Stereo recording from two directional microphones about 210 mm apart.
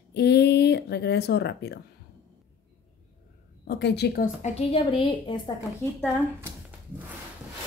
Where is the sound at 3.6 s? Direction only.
50° left (ahead or behind); by 5.5 s 20° left (ahead or behind).